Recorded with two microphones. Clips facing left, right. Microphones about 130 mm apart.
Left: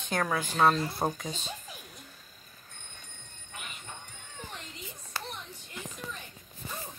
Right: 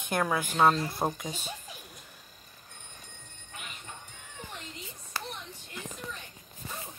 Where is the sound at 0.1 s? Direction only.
10° right (ahead or behind).